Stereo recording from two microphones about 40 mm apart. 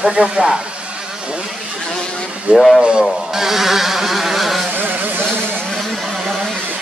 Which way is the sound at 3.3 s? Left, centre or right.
Centre.